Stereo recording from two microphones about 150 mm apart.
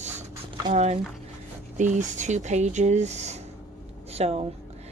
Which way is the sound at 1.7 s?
55° right (ahead or behind).